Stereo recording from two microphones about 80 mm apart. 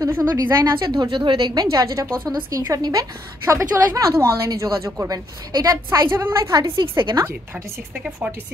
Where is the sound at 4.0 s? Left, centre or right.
Right.